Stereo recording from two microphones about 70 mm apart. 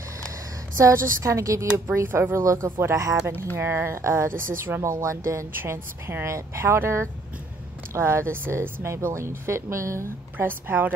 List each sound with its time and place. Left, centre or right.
0.7 s a woman's voice: right
3.5 s speech: right
4.8 s a woman's voice: right
5.5 s speech: right
10.3 s a woman's voice: right